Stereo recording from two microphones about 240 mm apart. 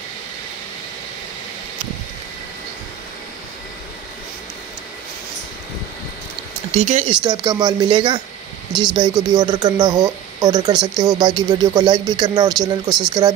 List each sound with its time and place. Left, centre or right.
6.7 s speech: right
7.4 s speech: centre